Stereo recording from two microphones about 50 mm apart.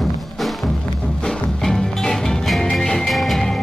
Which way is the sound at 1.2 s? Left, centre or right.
Centre.